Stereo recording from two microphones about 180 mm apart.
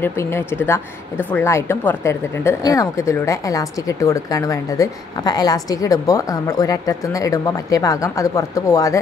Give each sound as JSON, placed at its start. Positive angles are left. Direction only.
{"t": 0.0, "sound": "speech", "side_deg": 15}